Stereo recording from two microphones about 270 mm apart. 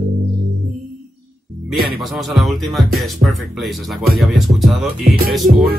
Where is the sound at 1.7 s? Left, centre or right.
Centre.